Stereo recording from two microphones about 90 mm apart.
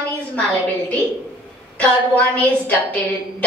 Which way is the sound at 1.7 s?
15° left (ahead or behind).